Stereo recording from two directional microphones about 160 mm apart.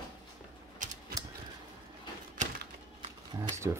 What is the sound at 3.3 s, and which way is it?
Speech, 25° right (ahead or behind).